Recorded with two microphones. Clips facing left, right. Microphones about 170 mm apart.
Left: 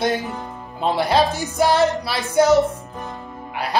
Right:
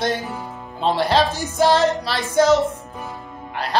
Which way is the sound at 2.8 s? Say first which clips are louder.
Left 1 dB; centre (ahead or behind).